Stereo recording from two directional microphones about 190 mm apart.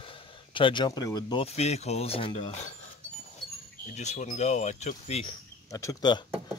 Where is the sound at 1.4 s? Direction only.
35° left (ahead or behind).